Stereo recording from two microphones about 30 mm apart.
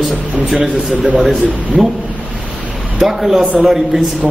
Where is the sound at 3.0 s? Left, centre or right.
Centre.